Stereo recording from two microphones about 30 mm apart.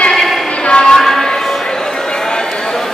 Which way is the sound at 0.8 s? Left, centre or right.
Centre.